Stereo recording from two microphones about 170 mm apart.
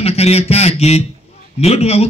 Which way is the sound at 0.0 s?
35° left (ahead or behind).